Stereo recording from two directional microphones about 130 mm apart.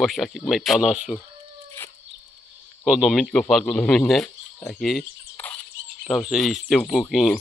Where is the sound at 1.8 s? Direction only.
15° left (ahead or behind).